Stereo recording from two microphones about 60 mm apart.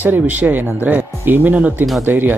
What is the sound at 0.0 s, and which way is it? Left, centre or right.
Speech, right.